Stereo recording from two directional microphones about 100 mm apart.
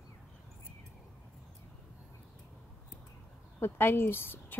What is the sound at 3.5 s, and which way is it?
A woman's voice, 20° left (ahead or behind).